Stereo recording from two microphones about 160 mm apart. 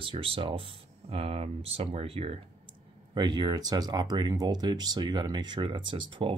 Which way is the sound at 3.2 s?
30° right (ahead or behind).